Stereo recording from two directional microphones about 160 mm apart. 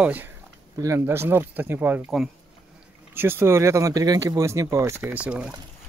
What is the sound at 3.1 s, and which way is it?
Speech, 15° right (ahead or behind).